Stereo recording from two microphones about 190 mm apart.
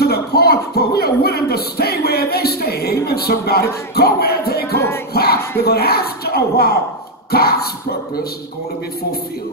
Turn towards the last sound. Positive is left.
turn(degrees=55)  # may be behind; listen again after turning